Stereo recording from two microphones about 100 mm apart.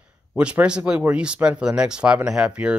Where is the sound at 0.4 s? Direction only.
10° right (ahead or behind).